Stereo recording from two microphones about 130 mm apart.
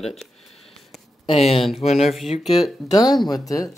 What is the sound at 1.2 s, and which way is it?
Speech, 50° left (ahead or behind).